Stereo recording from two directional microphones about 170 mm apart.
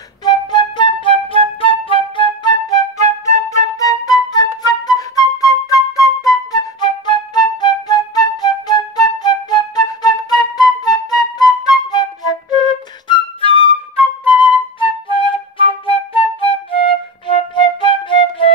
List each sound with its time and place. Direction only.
0.2 s flute: 25° left (ahead or behind)
14.8 s flute: 30° left (ahead or behind)